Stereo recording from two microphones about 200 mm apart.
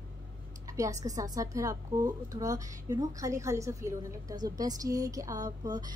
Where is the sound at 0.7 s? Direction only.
15° right (ahead or behind).